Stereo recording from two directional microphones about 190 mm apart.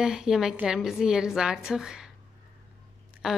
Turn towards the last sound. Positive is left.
turn(degrees=-5)  # may be behind; listen again after turning